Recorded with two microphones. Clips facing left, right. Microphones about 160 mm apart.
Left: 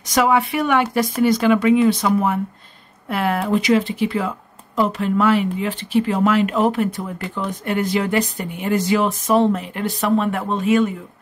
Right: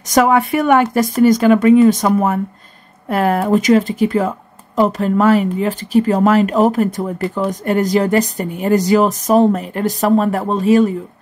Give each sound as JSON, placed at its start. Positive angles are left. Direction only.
{"t": 0.1, "sound": "speech", "side_deg": -45}